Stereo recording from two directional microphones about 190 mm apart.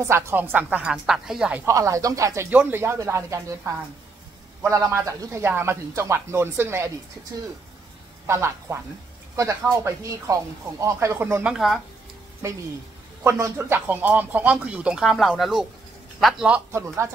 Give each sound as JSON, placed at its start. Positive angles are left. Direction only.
{"t": 0.0, "sound": "speech", "side_deg": -15}
{"t": 1.7, "sound": "speech", "side_deg": -15}
{"t": 8.3, "sound": "speech", "side_deg": -15}
{"t": 11.5, "sound": "speech", "side_deg": 0}
{"t": 12.4, "sound": "speech", "side_deg": -15}